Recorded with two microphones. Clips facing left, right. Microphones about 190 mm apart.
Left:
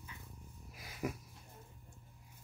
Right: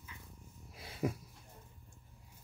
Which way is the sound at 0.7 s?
30° right (ahead or behind).